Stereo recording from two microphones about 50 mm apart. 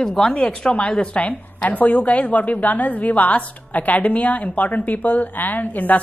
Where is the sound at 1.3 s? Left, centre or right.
Left.